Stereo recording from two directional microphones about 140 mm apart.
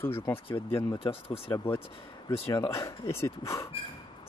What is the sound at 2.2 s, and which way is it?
Speech, 25° left (ahead or behind).